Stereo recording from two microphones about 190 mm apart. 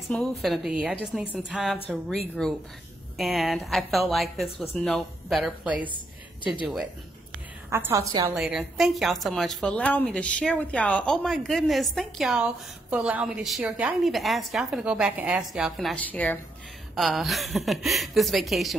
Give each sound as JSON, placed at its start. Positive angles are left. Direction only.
{"t": 0.1, "sound": "a woman's voice", "side_deg": 0}
{"t": 7.7, "sound": "a woman's voice", "side_deg": -15}
{"t": 8.4, "sound": "a woman's voice", "side_deg": 0}